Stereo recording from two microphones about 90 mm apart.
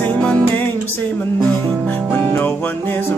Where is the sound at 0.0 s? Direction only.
10° left (ahead or behind).